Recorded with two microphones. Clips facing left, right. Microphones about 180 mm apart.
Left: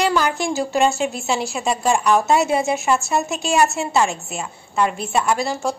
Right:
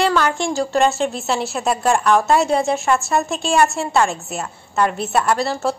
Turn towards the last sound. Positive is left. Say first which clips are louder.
# right 2 dB
turn(degrees=0)  # may be behind; listen again after turning